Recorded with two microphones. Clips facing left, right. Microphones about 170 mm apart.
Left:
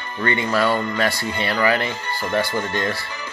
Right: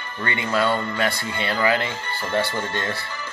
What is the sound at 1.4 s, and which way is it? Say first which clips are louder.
Speech: left 2 dB; 20° right (ahead or behind).